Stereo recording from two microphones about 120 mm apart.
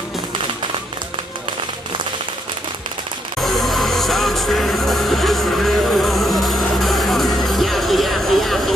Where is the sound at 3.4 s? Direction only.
Centre (ahead or behind).